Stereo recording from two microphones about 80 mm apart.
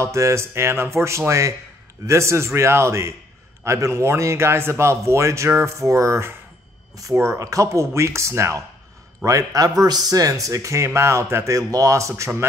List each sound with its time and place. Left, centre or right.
0.0 s a man's voice: right